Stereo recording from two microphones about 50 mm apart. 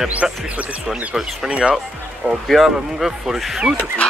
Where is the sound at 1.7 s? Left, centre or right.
Centre.